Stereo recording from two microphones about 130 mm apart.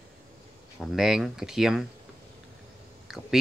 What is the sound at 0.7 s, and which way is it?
Speech, 5° right (ahead or behind).